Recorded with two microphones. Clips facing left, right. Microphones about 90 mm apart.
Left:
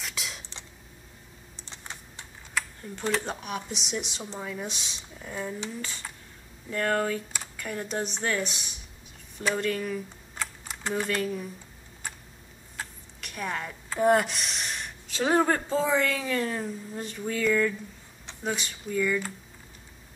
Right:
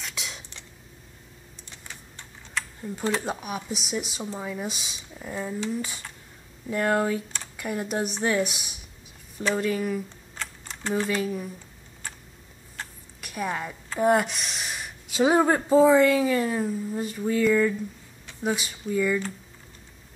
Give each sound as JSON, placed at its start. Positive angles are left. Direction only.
{"t": 0.0, "sound": "a sound", "side_deg": 0}
{"t": 1.6, "sound": "typing", "side_deg": 30}
{"t": 2.8, "sound": "speech", "side_deg": -5}
{"t": 10.3, "sound": "typing", "side_deg": 10}
{"t": 13.2, "sound": "a woman's voice", "side_deg": -5}